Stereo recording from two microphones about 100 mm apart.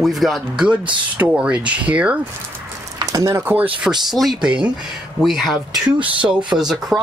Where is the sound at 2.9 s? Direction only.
35° right (ahead or behind).